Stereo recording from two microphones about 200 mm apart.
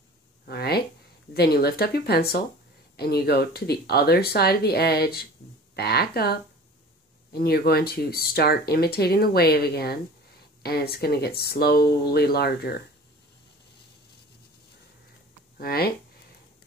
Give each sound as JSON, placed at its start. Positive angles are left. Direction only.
{"t": 0.5, "sound": "a sound", "side_deg": 50}
{"t": 1.3, "sound": "speech", "side_deg": 50}
{"t": 15.5, "sound": "speech", "side_deg": 50}